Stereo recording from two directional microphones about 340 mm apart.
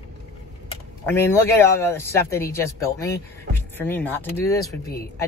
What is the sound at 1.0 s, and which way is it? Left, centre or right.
Speech, centre.